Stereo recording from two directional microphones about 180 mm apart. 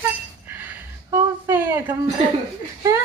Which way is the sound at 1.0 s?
15° right (ahead or behind).